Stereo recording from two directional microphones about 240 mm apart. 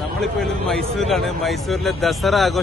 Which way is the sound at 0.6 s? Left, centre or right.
Centre.